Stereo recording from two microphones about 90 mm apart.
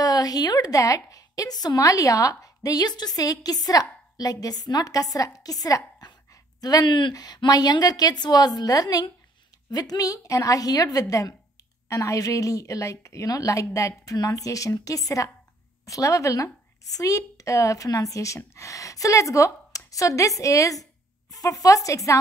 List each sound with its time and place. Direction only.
0.0 s a woman's voice: 45° left (ahead or behind)
6.9 s a woman's voice: 60° left (ahead or behind); by 22.2 s 40° left (ahead or behind)